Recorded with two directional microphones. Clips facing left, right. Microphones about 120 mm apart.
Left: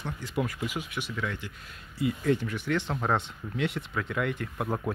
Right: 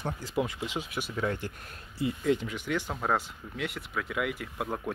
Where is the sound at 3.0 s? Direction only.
Centre (ahead or behind).